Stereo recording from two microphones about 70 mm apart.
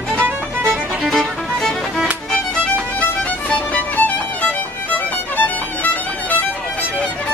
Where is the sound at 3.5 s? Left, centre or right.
Left.